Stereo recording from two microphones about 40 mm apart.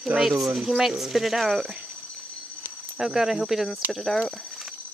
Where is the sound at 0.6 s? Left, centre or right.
Centre.